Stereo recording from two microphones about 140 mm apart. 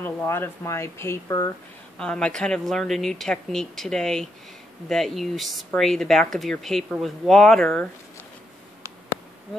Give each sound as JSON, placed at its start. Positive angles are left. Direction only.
{"t": 0.0, "sound": "speech", "side_deg": 15}
{"t": 2.0, "sound": "speech", "side_deg": 5}